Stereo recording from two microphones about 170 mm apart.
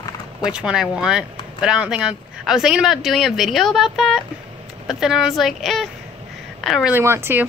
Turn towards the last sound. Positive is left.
turn(degrees=-10)  # may be behind; listen again after turning